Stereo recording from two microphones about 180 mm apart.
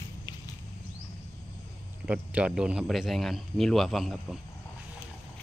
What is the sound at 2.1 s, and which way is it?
A man's voice, 5° right (ahead or behind).